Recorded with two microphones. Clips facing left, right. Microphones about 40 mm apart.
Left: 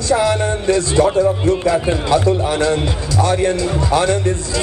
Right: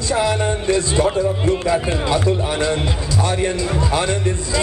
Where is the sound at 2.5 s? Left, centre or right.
Right.